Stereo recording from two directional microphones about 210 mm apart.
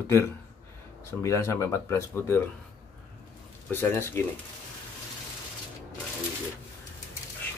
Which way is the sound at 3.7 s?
10° left (ahead or behind).